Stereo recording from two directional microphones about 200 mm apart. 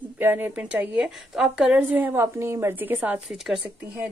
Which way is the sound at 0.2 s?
10° right (ahead or behind).